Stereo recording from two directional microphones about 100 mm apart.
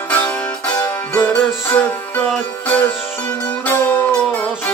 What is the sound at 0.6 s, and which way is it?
Music, 15° left (ahead or behind).